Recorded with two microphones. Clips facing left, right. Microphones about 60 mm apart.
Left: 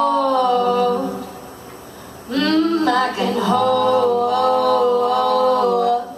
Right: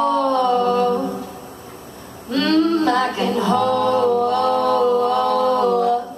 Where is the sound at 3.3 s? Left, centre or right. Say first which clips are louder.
Left 1 dB; left.